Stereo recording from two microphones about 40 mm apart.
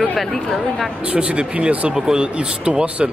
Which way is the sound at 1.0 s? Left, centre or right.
Right.